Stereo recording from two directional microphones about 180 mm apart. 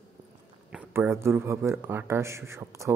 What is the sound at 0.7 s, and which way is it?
A man's voice, 15° right (ahead or behind).